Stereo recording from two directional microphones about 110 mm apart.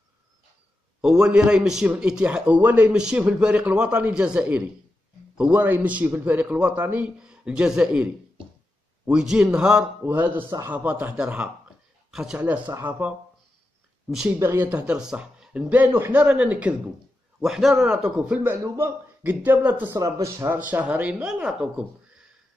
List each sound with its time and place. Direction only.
1.0 s a man's voice: 10° right (ahead or behind)
14.4 s a man's voice: 20° right (ahead or behind)
17.4 s a man's voice: centre (ahead or behind)
18.4 s a man's voice: 20° right (ahead or behind)
19.9 s a man's voice: 30° right (ahead or behind)
20.4 s a man's voice: 15° right (ahead or behind)